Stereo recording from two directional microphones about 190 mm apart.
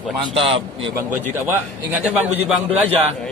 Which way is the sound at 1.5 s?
10° right (ahead or behind).